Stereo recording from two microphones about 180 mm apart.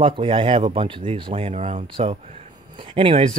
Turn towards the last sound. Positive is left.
turn(degrees=-30)  # may be behind; listen again after turning